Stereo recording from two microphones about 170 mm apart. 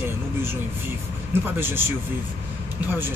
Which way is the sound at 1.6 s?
15° right (ahead or behind).